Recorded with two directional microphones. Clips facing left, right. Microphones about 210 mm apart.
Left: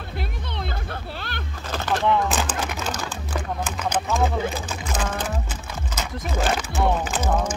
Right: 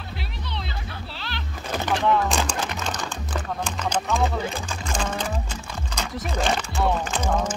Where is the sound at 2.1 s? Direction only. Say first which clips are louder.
Even; centre (ahead or behind).